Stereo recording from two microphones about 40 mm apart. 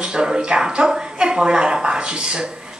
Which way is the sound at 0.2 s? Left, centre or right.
Centre.